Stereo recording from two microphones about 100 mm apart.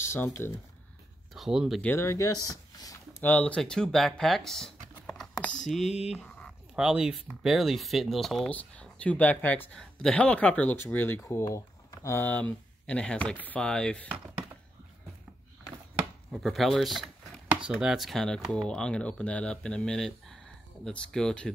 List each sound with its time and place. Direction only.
0.0 s speech: 25° left (ahead or behind)
1.3 s speech: 5° right (ahead or behind)
2.0 s speech: 30° left (ahead or behind)
3.2 s speech: 15° left (ahead or behind)
5.9 s speech: 90° left
6.2 s a sound: 10° left (ahead or behind)
6.7 s speech: 5° right (ahead or behind)
8.5 s speech: 15° left (ahead or behind)
11.2 s speech: 30° left (ahead or behind); by 14.0 s 5° left (ahead or behind)
16.3 s speech: centre (ahead or behind)